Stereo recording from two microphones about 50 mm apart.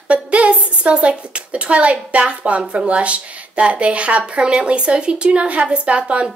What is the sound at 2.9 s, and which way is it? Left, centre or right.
A woman's voice, right.